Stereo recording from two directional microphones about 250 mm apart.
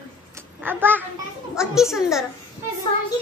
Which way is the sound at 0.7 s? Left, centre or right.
Centre.